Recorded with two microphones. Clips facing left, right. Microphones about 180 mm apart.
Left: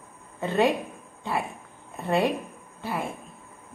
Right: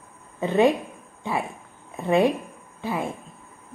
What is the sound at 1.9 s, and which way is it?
Speech, 15° right (ahead or behind).